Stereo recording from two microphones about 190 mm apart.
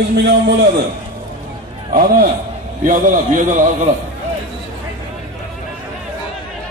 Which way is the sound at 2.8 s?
45° right (ahead or behind).